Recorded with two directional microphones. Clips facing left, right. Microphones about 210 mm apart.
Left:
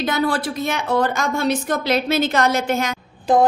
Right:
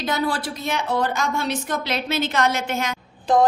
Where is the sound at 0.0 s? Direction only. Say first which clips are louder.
Left 3 dB; 55° left (ahead or behind); by 2.9 s 40° left (ahead or behind).